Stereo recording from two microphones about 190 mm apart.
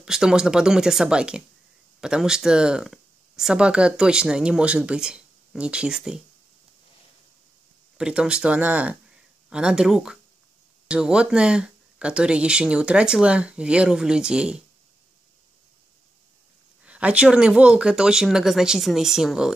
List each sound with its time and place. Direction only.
0.0 s speech: 5° right (ahead or behind)
8.0 s speech: 5° right (ahead or behind)
16.8 s speech: 5° right (ahead or behind)